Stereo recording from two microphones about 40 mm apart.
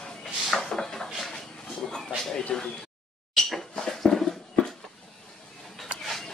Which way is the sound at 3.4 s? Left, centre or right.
Centre.